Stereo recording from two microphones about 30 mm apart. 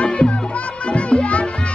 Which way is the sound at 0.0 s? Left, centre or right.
Left.